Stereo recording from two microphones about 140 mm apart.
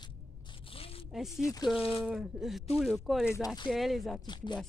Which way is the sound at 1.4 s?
25° left (ahead or behind).